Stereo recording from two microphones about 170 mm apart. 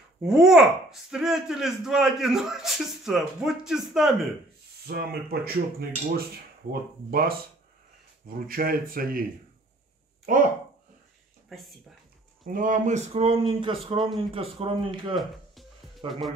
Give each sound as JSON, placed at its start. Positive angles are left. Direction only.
{"t": 0.2, "sound": "speech", "side_deg": -5}
{"t": 4.8, "sound": "speech", "side_deg": -65}
{"t": 11.4, "sound": "speech", "side_deg": 0}
{"t": 12.4, "sound": "speech", "side_deg": -50}
{"t": 16.1, "sound": "speech", "side_deg": 0}